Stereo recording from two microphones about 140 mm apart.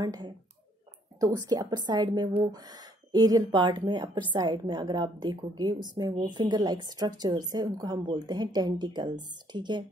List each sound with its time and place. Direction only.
0.0 s a woman's voice: 30° right (ahead or behind)